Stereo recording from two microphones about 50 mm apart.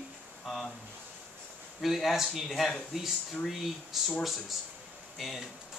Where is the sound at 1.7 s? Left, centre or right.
Centre.